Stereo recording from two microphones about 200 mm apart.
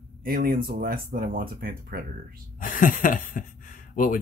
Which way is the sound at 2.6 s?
40° left (ahead or behind).